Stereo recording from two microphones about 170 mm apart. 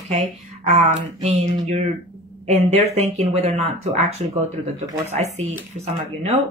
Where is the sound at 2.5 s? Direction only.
40° right (ahead or behind).